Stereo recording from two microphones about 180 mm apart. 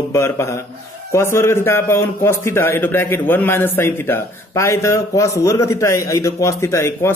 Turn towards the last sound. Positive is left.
turn(degrees=15)  # may be behind; listen again after turning